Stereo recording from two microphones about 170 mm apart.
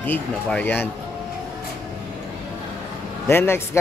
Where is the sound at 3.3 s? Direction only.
15° left (ahead or behind).